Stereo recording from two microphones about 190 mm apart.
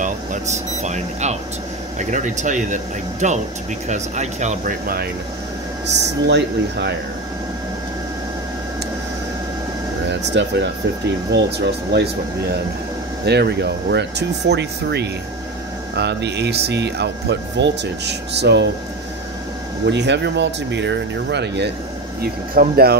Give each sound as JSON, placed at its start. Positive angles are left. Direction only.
{"t": 0.0, "sound": "speech", "side_deg": -40}
{"t": 5.9, "sound": "speech", "side_deg": -60}
{"t": 10.0, "sound": "speech", "side_deg": -65}
{"t": 19.9, "sound": "speech", "side_deg": -65}
{"t": 22.2, "sound": "speech", "side_deg": -50}